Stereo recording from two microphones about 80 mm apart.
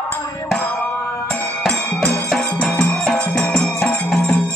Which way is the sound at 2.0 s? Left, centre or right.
Centre.